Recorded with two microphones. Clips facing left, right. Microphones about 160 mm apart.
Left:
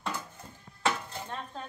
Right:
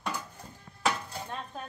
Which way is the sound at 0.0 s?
10° right (ahead or behind).